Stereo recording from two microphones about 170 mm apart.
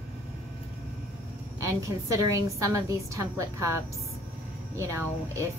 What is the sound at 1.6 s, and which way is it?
A woman's voice, 20° right (ahead or behind).